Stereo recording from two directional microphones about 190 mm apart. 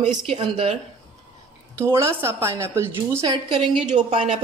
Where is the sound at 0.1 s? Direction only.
30° right (ahead or behind).